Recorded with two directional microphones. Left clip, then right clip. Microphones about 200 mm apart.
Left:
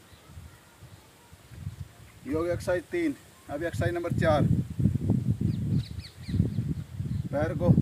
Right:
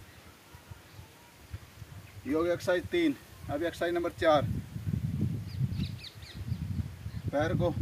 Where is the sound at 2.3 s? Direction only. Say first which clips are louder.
Even; centre (ahead or behind).